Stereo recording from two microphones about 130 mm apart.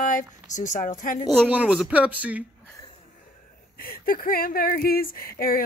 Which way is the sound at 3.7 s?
90° left.